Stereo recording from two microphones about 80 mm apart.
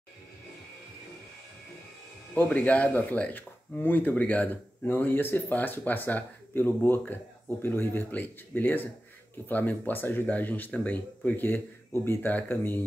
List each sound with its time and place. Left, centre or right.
2.3 s speech: centre